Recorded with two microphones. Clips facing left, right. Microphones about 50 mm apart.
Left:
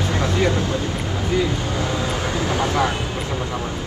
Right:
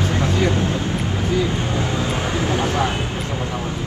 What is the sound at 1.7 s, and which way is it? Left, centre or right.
Speech, right.